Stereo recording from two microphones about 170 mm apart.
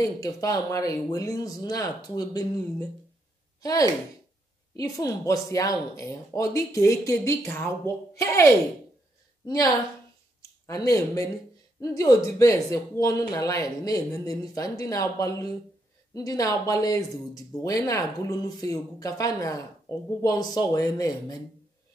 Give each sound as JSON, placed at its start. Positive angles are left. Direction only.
{"t": 0.0, "sound": "speech", "side_deg": 20}